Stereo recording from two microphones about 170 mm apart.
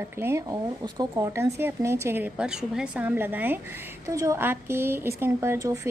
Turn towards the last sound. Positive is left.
turn(degrees=-20)  # may be behind; listen again after turning